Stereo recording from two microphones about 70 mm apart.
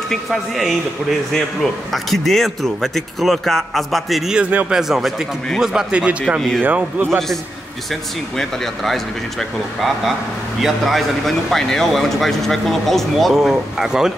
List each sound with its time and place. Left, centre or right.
0.1 s speech: centre
4.4 s a man's voice: right
4.6 s a man's voice: centre
6.6 s a man's voice: right
7.1 s speech: centre